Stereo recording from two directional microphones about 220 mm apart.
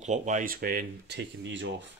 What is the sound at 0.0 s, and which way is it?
Speech, 35° right (ahead or behind).